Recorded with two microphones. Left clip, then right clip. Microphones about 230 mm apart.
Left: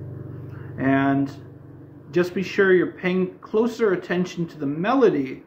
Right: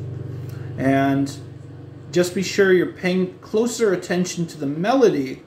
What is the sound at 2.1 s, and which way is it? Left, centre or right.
Speech, centre.